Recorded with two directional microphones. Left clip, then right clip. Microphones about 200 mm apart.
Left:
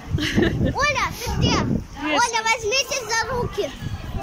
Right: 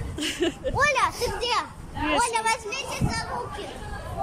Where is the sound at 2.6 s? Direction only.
35° left (ahead or behind).